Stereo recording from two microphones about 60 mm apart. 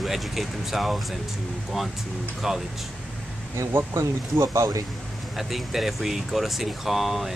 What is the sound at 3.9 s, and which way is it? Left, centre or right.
Speech, right.